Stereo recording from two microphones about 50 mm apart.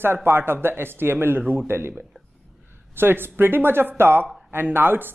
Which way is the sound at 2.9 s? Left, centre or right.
Right.